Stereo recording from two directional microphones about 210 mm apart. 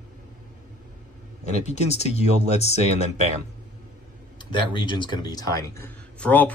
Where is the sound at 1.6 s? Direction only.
30° left (ahead or behind).